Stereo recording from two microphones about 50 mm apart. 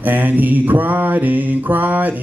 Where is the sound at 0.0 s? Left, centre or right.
Right.